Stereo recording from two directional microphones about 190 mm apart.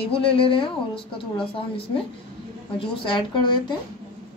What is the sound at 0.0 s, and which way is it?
A woman's voice, 30° left (ahead or behind).